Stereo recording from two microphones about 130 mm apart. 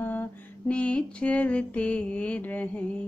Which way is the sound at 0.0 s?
15° left (ahead or behind).